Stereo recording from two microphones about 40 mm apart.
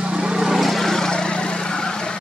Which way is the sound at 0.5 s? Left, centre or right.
Centre.